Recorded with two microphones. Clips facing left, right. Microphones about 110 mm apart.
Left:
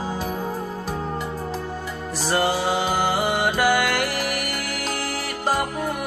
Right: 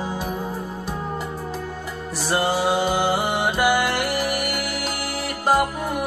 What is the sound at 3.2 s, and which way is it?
Music, 40° left (ahead or behind).